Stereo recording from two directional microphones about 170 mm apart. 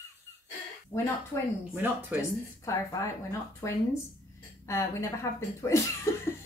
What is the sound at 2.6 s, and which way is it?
Speech, 15° left (ahead or behind).